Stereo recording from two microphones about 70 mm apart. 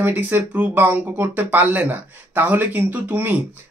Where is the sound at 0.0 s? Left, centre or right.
Right.